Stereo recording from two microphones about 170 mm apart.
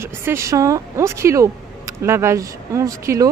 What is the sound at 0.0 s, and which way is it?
Speech, 15° right (ahead or behind).